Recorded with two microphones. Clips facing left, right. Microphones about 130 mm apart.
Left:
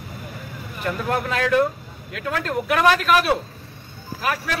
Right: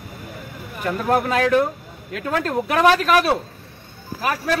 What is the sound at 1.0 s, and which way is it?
Speech, 35° right (ahead or behind).